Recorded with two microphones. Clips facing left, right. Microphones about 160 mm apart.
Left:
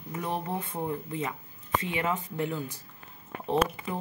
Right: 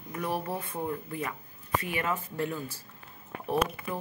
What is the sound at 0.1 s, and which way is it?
Speech, 20° left (ahead or behind).